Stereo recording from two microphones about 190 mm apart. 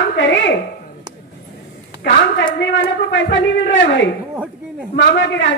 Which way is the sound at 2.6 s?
70° left (ahead or behind).